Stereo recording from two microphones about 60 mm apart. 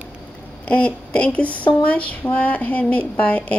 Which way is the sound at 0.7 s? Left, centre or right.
Left.